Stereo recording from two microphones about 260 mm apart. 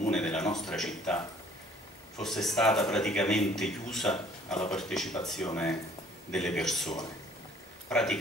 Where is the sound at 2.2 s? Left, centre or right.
Centre.